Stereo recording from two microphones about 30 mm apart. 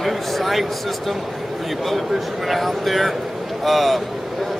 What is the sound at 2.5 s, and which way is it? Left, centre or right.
A man's voice, centre.